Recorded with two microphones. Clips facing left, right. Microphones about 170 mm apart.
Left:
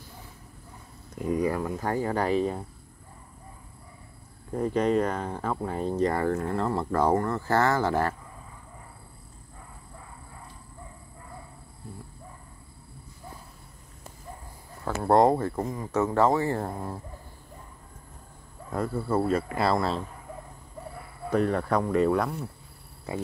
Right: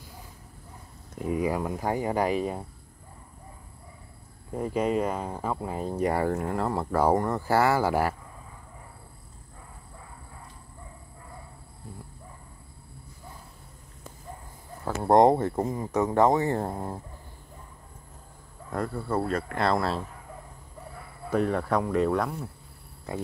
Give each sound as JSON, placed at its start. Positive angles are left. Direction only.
{"t": 1.1, "sound": "speech", "side_deg": -5}
{"t": 4.5, "sound": "speech", "side_deg": -10}
{"t": 15.0, "sound": "speech", "side_deg": -20}
{"t": 18.7, "sound": "speech", "side_deg": 5}
{"t": 21.3, "sound": "speech", "side_deg": 0}